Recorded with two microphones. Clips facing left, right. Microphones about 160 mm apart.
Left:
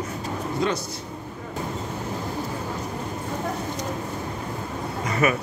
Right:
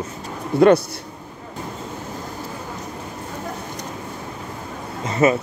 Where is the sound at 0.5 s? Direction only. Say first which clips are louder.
Right 12 dB; 60° right (ahead or behind).